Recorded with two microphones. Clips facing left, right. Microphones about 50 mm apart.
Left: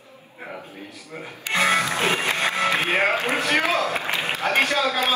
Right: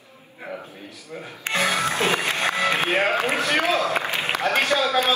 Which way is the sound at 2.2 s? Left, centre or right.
Left.